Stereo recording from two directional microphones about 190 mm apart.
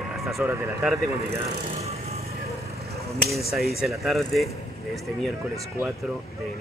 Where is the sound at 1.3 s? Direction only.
35° right (ahead or behind).